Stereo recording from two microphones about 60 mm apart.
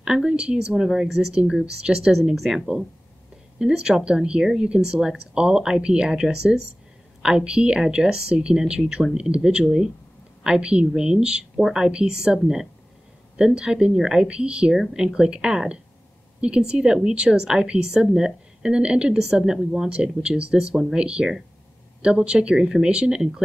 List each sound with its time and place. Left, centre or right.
0.0 s speech: centre